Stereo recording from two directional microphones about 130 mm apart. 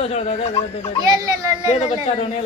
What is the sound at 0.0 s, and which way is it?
Speech, 55° left (ahead or behind).